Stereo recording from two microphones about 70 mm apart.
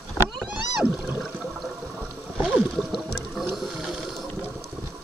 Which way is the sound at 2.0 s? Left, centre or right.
Centre.